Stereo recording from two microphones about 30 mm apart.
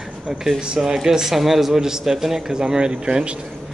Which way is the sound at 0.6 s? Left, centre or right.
Right.